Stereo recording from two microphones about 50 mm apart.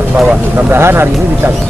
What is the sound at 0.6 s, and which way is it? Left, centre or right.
Speech, right.